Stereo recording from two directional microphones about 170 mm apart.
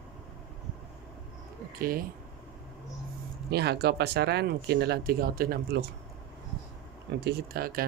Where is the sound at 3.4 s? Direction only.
70° right (ahead or behind).